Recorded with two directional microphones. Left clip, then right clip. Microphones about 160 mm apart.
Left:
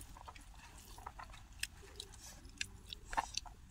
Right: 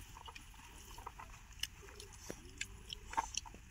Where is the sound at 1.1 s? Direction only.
25° left (ahead or behind).